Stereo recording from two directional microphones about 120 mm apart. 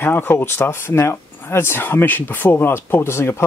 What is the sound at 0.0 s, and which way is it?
Speech, 20° left (ahead or behind).